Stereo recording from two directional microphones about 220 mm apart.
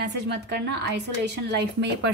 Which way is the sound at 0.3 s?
50° right (ahead or behind).